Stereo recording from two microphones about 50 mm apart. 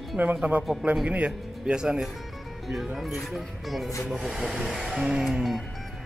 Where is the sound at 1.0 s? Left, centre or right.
Right.